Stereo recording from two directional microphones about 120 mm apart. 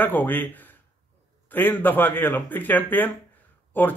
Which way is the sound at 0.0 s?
15° left (ahead or behind).